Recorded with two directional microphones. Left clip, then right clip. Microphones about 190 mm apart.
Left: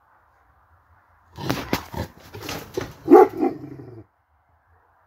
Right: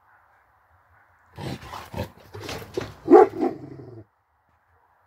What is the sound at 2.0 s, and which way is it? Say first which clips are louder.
Dog: left 1 dB; 25° right (ahead or behind).